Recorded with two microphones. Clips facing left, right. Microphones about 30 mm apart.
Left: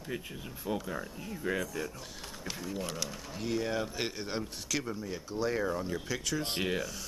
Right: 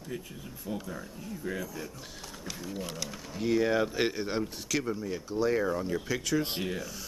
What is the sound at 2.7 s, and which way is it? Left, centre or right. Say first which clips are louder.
Speech: even; centre.